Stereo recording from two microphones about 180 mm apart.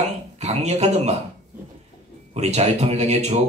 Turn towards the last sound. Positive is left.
turn(degrees=-40)  # may be behind; listen again after turning